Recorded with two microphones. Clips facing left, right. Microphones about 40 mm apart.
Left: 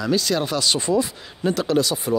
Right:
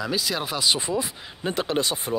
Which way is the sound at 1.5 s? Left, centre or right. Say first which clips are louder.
Left 5 dB; right.